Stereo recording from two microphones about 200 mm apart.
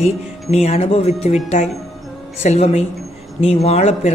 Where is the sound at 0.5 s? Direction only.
30° left (ahead or behind).